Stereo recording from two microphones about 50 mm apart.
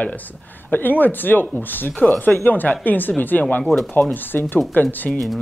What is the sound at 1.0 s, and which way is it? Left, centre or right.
Speech, left.